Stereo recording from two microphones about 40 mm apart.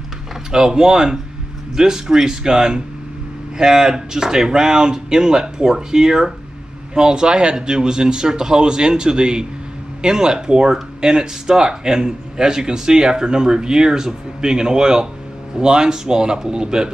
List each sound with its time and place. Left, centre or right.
0.5 s speech: centre